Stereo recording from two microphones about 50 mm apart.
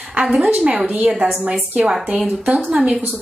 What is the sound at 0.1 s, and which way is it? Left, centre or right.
A woman's voice, right.